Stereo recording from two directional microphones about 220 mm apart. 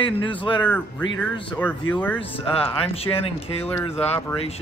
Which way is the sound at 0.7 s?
10° left (ahead or behind).